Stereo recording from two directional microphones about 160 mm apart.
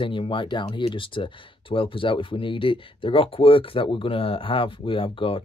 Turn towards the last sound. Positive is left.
turn(degrees=35)  # may be behind; listen again after turning